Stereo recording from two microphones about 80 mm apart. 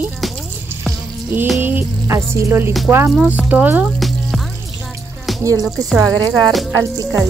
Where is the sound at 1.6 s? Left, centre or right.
Right.